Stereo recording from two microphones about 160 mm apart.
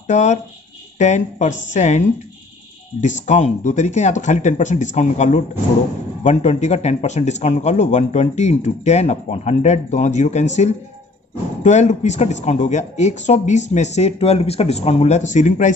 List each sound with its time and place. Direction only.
0.0 s speech: 45° left (ahead or behind)